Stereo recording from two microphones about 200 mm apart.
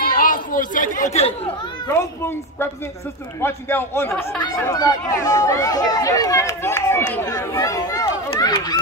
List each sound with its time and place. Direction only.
0.0 s chatter: 45° left (ahead or behind)
1.9 s speech: 10° left (ahead or behind)
8.3 s run: 20° left (ahead or behind)